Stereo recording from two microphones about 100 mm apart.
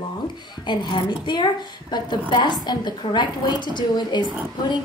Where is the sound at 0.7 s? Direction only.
50° left (ahead or behind).